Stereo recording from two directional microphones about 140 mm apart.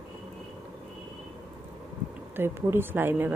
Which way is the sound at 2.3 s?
15° right (ahead or behind).